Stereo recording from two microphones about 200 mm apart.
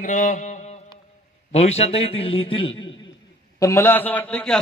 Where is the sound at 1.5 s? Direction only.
30° left (ahead or behind).